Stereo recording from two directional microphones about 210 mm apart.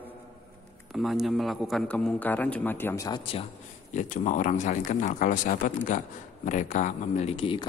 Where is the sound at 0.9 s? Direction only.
Centre (ahead or behind).